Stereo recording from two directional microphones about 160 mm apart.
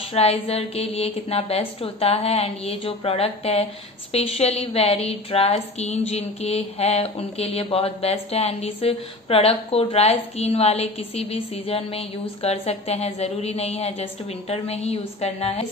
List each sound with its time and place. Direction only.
0.1 s a woman's voice: 40° left (ahead or behind)